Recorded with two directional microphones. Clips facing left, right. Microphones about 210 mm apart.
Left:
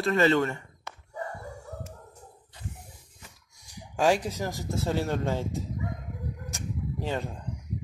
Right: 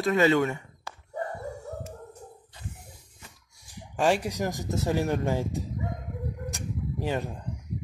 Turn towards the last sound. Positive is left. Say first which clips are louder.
# right 2 dB
turn(degrees=-15)  # may be behind; listen again after turning